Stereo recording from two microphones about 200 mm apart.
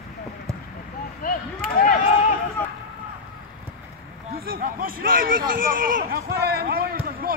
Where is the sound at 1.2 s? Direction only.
45° left (ahead or behind).